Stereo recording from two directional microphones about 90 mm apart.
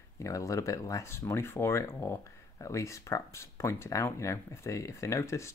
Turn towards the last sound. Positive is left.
turn(degrees=35)  # may be behind; listen again after turning